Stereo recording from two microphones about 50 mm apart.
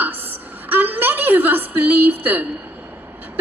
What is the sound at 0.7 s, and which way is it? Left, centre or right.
A woman's voice, right.